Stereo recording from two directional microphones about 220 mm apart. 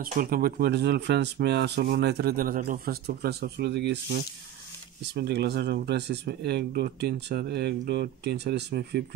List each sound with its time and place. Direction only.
0.0 s speech: 40° right (ahead or behind)